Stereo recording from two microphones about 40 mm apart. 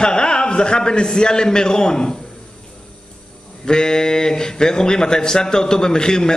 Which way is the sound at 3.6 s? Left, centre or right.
Centre.